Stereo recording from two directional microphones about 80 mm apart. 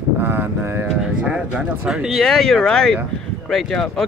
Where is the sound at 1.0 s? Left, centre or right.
Centre.